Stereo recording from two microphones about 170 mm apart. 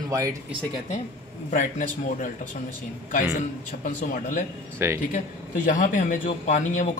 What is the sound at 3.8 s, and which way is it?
Speech, 45° left (ahead or behind).